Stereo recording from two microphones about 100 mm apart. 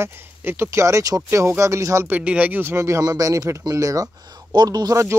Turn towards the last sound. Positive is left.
turn(degrees=-35)  # may be behind; listen again after turning